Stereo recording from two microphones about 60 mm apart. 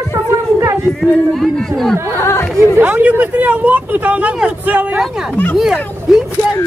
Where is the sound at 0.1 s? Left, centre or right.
Right.